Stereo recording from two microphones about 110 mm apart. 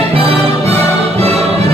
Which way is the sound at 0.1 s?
65° right (ahead or behind).